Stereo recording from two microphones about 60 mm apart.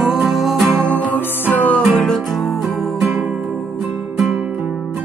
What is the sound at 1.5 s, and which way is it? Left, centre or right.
Music, left.